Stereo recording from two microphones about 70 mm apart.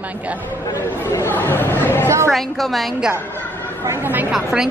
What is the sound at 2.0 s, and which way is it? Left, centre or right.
Speech, right.